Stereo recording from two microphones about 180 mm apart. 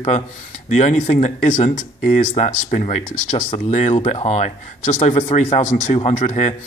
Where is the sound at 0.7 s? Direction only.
40° left (ahead or behind).